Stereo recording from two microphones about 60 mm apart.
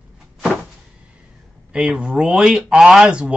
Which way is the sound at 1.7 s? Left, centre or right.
Centre.